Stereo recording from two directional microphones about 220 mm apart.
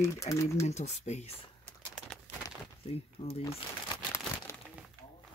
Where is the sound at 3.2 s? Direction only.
25° left (ahead or behind).